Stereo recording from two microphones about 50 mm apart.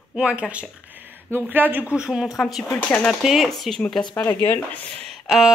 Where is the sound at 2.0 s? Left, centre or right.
Centre.